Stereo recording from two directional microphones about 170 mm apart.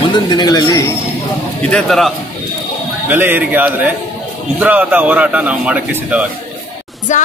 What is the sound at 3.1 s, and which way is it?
A man's voice, 10° right (ahead or behind).